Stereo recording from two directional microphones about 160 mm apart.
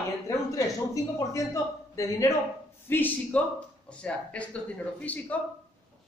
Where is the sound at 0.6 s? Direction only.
20° left (ahead or behind).